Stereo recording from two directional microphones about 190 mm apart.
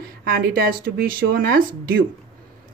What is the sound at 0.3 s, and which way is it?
Speech, 50° right (ahead or behind).